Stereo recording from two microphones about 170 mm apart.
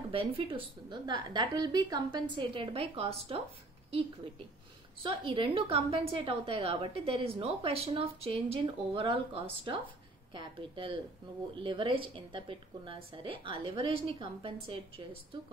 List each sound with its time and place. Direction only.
0.1 s a woman's voice: 30° right (ahead or behind)
5.0 s a woman's voice: 30° right (ahead or behind)